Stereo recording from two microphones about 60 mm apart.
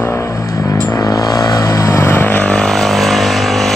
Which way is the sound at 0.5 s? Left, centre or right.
Left.